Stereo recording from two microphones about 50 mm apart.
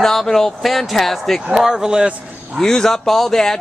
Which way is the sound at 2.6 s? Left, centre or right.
Centre.